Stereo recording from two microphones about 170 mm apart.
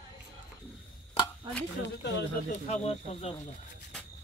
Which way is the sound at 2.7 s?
35° left (ahead or behind).